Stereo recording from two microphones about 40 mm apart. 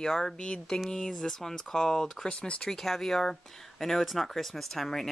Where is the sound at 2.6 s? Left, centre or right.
Centre.